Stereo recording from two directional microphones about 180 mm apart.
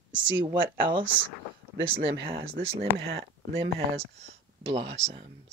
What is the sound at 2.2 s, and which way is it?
Speech, 30° right (ahead or behind).